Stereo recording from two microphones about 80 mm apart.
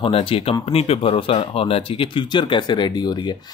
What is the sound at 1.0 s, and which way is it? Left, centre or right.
Speech, left.